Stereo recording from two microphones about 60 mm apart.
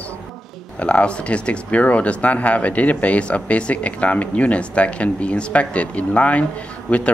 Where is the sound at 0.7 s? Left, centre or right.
Centre.